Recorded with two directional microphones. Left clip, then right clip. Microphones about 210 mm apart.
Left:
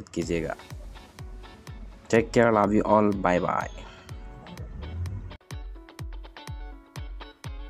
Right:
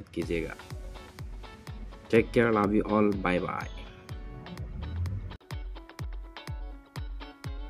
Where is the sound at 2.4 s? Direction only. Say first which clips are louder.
Left 5 dB; 5° left (ahead or behind).